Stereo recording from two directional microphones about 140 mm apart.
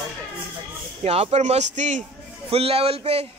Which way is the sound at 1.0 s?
50° right (ahead or behind).